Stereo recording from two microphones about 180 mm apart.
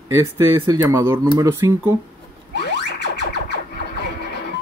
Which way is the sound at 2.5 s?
70° left (ahead or behind).